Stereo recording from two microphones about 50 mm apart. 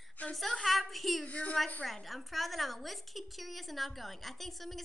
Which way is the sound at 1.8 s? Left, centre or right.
Centre.